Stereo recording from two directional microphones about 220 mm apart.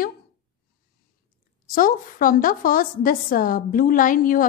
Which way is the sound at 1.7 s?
40° left (ahead or behind).